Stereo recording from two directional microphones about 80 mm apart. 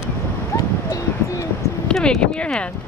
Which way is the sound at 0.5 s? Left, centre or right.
Left.